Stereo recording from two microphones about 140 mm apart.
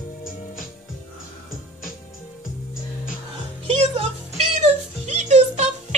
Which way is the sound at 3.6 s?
45° right (ahead or behind).